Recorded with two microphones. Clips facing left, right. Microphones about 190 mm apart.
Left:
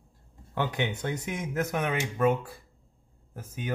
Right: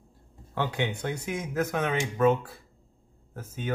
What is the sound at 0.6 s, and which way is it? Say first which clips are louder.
Speech: even; 20° left (ahead or behind).